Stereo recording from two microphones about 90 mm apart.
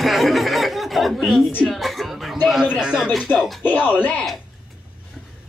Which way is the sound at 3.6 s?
20° left (ahead or behind).